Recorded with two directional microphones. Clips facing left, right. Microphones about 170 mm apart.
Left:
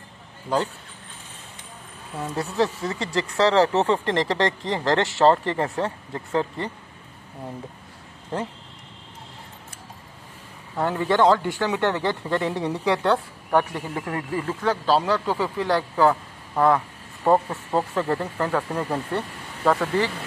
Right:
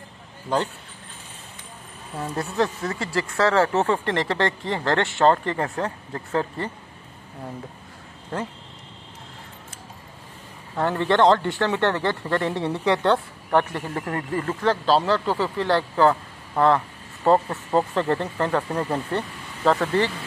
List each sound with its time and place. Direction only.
2.3 s speech: 10° left (ahead or behind)
10.8 s speech: 5° left (ahead or behind)